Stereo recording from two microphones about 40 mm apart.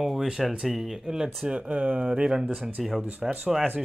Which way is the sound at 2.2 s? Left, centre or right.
Centre.